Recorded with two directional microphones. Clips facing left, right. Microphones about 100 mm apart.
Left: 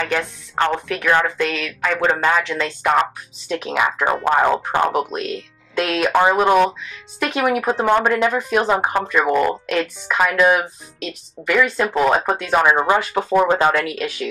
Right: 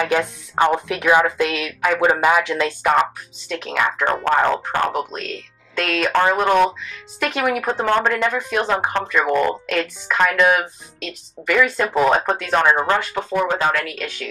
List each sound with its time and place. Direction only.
0.0 s a woman's voice: 15° right (ahead or behind); by 12.7 s 5° left (ahead or behind)
12.7 s speech: 15° left (ahead or behind)
13.8 s speech: 5° left (ahead or behind)